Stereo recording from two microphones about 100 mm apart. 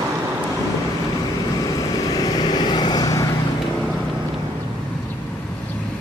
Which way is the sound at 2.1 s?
40° left (ahead or behind).